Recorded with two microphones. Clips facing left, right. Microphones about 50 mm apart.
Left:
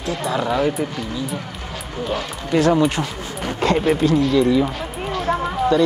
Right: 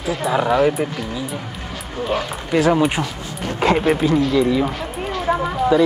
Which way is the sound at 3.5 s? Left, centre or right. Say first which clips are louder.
Right 2 dB; right.